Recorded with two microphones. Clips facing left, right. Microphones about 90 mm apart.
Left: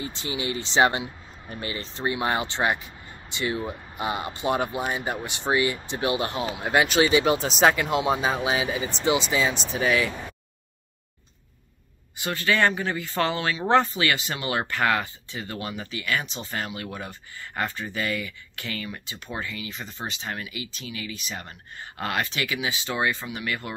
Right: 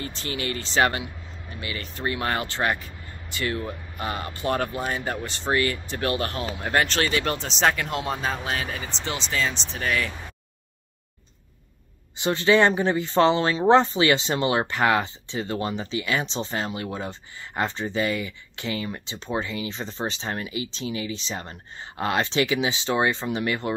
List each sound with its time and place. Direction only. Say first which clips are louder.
0.0 s speech: even; 15° left (ahead or behind)
1.5 s speech: left 1 dB; 35° left (ahead or behind); by 6.5 s 20° left (ahead or behind)
6.6 s speech: left 3 dB; 5° left (ahead or behind)
12.2 s speech: right 4 dB; 25° right (ahead or behind)